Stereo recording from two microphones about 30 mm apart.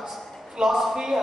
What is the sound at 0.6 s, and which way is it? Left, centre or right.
Speech, centre.